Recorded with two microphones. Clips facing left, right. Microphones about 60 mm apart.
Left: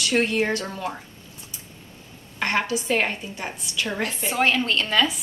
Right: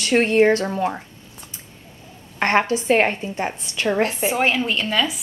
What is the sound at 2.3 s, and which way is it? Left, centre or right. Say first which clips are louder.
Speech: right 6 dB; right.